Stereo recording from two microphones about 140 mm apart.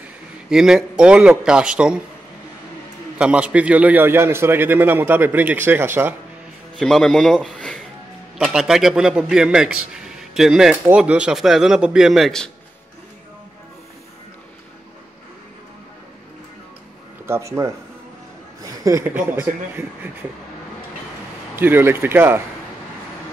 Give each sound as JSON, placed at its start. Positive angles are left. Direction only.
{"t": 0.5, "sound": "a man's voice", "side_deg": -5}
{"t": 3.2, "sound": "a man's voice", "side_deg": -10}
{"t": 6.8, "sound": "a man's voice", "side_deg": 0}
{"t": 17.3, "sound": "a man's voice", "side_deg": -20}
{"t": 21.5, "sound": "a man's voice", "side_deg": -15}